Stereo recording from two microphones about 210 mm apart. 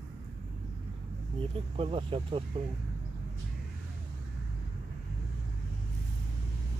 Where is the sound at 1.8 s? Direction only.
25° right (ahead or behind).